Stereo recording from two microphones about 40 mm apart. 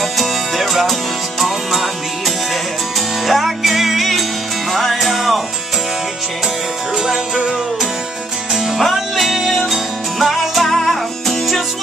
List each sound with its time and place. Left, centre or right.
0.0 s music: centre
7.0 s music: centre
8.5 s music: centre